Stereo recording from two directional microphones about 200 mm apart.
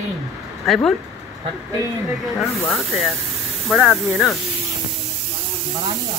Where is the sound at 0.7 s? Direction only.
5° left (ahead or behind).